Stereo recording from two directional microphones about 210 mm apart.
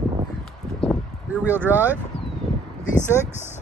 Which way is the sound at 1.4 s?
10° right (ahead or behind).